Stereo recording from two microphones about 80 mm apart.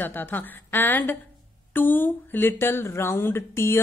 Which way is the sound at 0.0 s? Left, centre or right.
Left.